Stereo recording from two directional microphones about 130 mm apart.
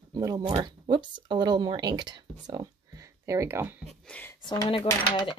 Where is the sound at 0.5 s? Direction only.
35° right (ahead or behind); by 3.8 s 15° right (ahead or behind).